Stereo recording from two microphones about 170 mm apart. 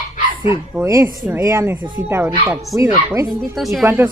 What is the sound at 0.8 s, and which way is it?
Speech, 20° right (ahead or behind).